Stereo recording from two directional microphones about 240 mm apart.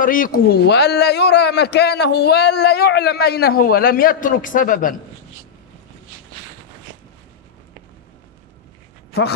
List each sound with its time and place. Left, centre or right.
0.0 s a man's voice: left